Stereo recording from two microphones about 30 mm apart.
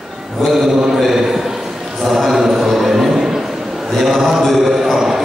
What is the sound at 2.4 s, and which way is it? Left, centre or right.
Music, centre.